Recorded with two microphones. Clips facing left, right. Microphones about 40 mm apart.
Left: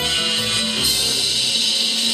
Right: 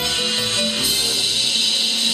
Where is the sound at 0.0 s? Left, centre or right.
Left.